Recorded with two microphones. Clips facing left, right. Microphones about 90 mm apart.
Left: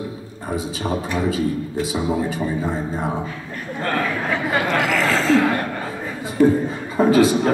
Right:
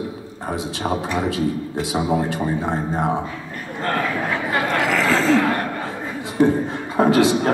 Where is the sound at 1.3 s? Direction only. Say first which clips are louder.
Even; 80° right.